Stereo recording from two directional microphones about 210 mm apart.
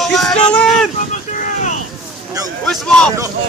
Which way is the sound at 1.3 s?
35° left (ahead or behind).